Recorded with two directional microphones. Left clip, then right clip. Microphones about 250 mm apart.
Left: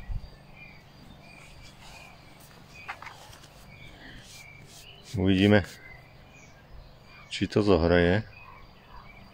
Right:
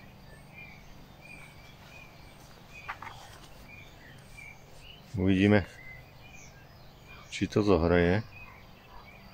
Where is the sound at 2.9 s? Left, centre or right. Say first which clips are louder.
Left 1 dB; left.